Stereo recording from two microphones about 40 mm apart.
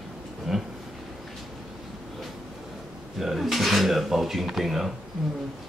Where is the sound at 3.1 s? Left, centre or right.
Centre.